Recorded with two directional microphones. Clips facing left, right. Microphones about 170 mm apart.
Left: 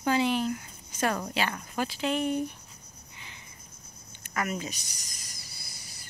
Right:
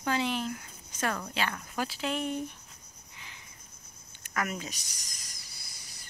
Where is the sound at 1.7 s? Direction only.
Centre (ahead or behind).